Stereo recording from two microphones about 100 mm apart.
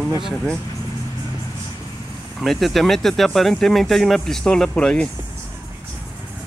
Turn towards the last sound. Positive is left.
turn(degrees=10)  # may be behind; listen again after turning